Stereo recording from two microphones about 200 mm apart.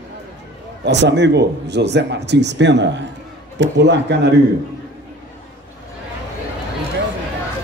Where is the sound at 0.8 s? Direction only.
60° right (ahead or behind).